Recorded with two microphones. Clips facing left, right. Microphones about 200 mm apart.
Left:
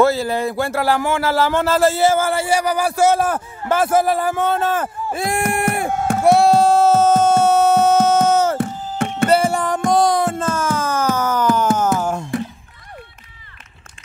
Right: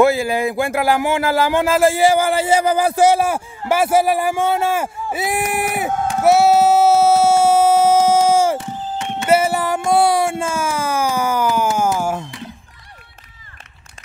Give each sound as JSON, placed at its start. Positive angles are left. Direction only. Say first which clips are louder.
{"t": 0.0, "sound": "speech", "louder": "right 1 dB", "side_deg": -15}
{"t": 6.2, "sound": "music", "louder": "even", "side_deg": -5}
{"t": 8.5, "sound": "music", "louder": "left 3 dB", "side_deg": 55}
{"t": 9.3, "sound": "a sound", "louder": "right 3 dB", "side_deg": -5}